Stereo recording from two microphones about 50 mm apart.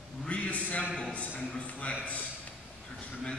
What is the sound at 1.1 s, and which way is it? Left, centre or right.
A man's voice, left.